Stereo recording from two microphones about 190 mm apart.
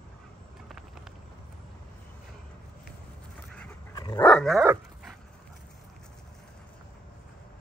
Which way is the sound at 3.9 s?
20° left (ahead or behind).